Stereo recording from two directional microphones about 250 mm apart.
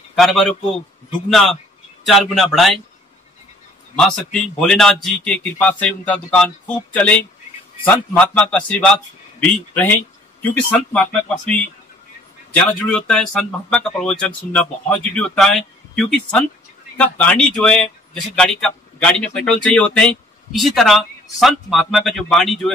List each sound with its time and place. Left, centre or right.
0.1 s a man's voice: centre
3.9 s speech: centre
12.9 s speech: centre